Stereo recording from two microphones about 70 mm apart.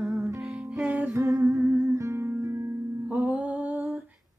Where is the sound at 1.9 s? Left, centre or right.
Right.